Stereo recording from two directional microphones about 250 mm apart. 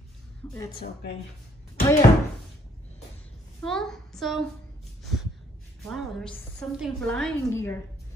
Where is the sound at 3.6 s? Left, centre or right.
Centre.